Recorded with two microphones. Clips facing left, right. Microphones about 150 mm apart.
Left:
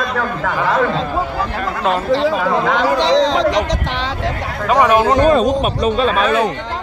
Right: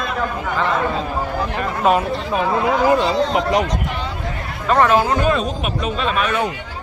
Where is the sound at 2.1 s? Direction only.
90° left.